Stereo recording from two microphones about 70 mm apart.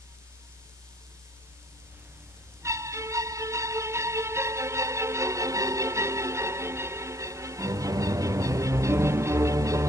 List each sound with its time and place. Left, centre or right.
2.6 s music: right